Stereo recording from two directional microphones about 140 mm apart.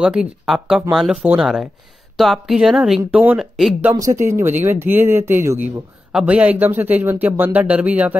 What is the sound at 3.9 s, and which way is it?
Speech, 25° right (ahead or behind).